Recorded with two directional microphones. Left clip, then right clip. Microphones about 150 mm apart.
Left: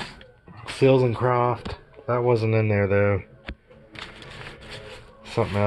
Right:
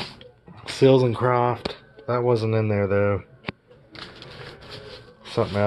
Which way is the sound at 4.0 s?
50° right (ahead or behind).